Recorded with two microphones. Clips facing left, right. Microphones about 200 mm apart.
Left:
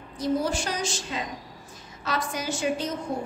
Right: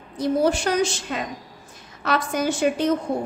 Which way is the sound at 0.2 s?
60° right (ahead or behind).